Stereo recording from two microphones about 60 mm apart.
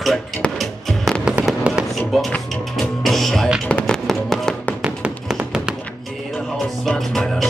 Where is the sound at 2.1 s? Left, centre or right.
Centre.